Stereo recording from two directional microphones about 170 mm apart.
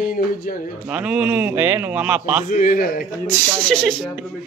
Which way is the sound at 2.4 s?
50° left (ahead or behind).